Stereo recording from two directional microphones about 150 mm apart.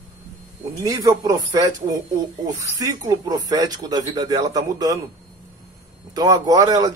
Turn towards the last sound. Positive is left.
turn(degrees=-25)  # may be behind; listen again after turning